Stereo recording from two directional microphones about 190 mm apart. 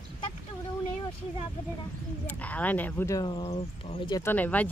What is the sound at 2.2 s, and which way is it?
Speech, 10° left (ahead or behind).